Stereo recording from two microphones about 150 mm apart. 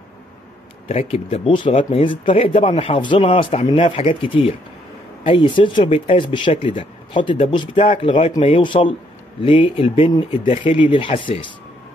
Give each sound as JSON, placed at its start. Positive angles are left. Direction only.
{"t": 0.8, "sound": "a man's voice", "side_deg": 40}